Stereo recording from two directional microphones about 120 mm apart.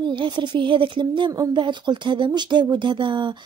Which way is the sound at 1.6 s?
40° right (ahead or behind).